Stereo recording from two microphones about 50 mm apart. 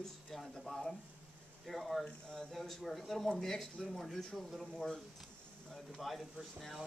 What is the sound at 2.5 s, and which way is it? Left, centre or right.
Speech, centre.